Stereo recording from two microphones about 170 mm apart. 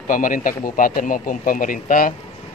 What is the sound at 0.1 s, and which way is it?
A man's voice, 50° left (ahead or behind).